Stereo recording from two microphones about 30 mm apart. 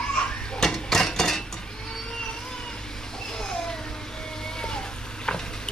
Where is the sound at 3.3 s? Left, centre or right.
Left.